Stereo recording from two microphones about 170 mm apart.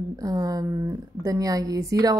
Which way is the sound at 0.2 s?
20° right (ahead or behind).